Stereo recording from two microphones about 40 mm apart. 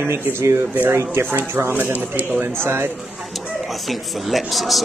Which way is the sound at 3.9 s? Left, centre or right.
Centre.